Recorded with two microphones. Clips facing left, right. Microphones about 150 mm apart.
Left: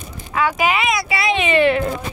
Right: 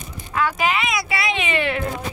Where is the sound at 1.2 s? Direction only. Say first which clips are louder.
Left 9 dB; 35° left (ahead or behind).